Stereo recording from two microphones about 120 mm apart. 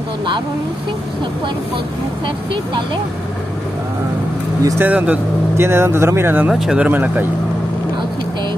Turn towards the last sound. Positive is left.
turn(degrees=-15)  # may be behind; listen again after turning